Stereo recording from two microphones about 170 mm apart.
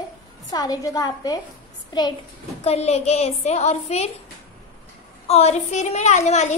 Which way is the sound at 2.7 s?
40° left (ahead or behind).